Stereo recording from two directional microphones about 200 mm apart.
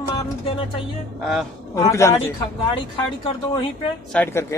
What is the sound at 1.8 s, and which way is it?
Speech, 15° left (ahead or behind).